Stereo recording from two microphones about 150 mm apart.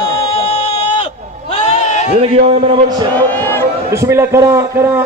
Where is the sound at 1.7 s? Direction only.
50° left (ahead or behind).